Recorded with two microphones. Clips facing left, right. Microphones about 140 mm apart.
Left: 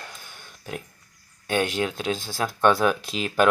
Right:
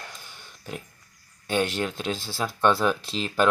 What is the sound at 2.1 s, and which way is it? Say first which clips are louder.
Speech: left 3 dB; 45° left (ahead or behind).